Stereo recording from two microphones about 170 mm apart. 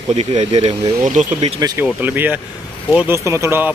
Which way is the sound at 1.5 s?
20° right (ahead or behind).